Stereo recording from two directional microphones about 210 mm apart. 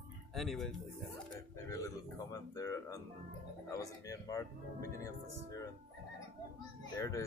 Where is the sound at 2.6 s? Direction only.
15° left (ahead or behind).